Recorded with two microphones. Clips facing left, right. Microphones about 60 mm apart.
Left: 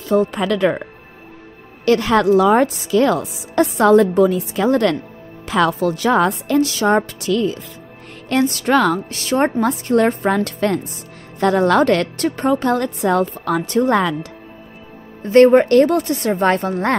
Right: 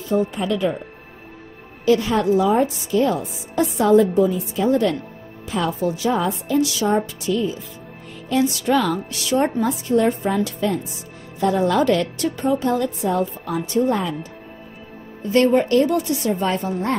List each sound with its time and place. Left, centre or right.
0.1 s speech: left
1.9 s a woman's voice: left
5.5 s a woman's voice: left
6.6 s a woman's voice: left
8.3 s a woman's voice: left
15.2 s a woman's voice: left